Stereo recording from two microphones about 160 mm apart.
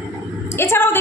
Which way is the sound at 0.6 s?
15° left (ahead or behind).